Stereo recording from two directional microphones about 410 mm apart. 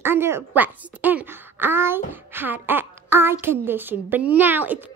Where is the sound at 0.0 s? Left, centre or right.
Centre.